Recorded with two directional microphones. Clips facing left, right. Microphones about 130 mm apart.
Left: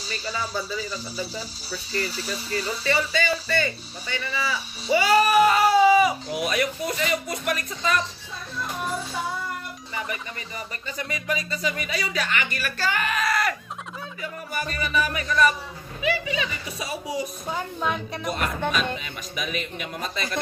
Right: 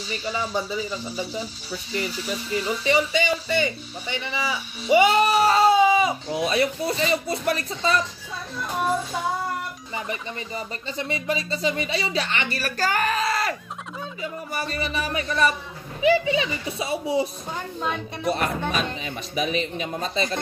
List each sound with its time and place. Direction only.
0.6 s speech: 15° right (ahead or behind)
0.8 s speech: 35° left (ahead or behind)
2.5 s speech: 15° right (ahead or behind)
9.9 s speech: 30° right (ahead or behind)
17.7 s speech: centre (ahead or behind)
18.2 s speech: 35° right (ahead or behind)